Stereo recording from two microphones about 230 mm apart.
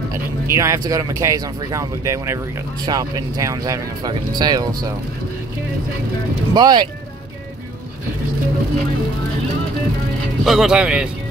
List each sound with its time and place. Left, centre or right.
0.5 s speech: centre
6.5 s speech: centre
10.4 s speech: centre